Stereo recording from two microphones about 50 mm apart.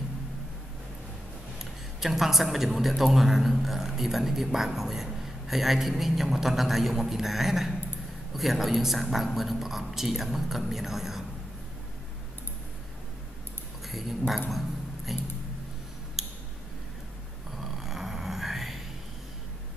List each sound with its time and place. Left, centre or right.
1.6 s a woman's voice: centre
13.8 s speech: centre
16.2 s a sound: centre
17.5 s snoring: centre